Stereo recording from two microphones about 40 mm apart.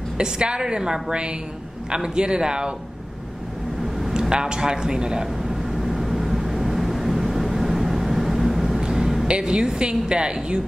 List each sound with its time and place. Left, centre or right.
0.2 s a woman's voice: right
4.1 s a sound: centre
9.3 s a woman's voice: right